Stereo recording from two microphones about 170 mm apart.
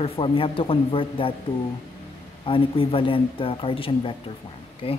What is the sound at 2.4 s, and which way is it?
A man's voice, 30° left (ahead or behind).